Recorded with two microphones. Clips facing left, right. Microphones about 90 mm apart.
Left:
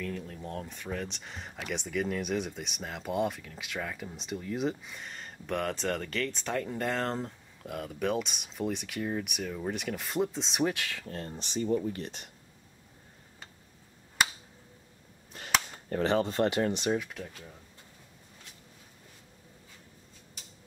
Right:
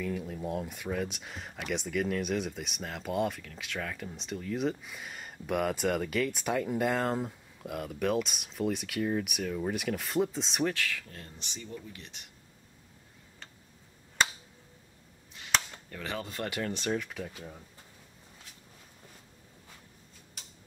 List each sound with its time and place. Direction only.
0.0 s speech: 10° right (ahead or behind)
10.6 s speech: 20° left (ahead or behind)
11.1 s speech: 40° left (ahead or behind)
15.3 s cap gun: 45° left (ahead or behind)
15.9 s speech: 35° left (ahead or behind)
16.8 s speech: 10° left (ahead or behind)
17.1 s speech: 5° right (ahead or behind)